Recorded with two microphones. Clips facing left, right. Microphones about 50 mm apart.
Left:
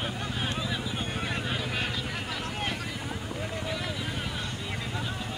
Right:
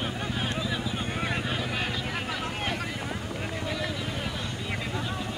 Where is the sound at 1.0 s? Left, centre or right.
Centre.